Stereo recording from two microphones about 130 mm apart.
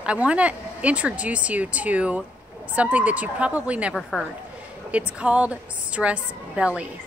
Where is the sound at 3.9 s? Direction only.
5° left (ahead or behind).